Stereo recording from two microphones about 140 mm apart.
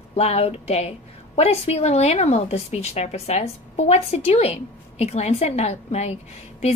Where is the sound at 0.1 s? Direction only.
50° left (ahead or behind).